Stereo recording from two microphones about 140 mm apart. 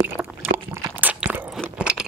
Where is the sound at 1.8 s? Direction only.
5° right (ahead or behind).